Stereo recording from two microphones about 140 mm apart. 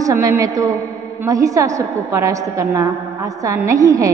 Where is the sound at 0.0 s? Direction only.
20° right (ahead or behind).